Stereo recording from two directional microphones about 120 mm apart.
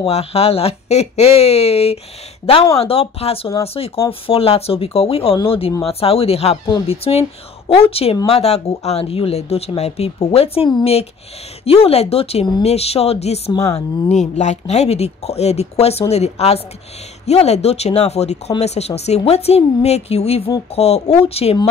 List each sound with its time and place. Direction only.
0.0 s speech: 60° left (ahead or behind)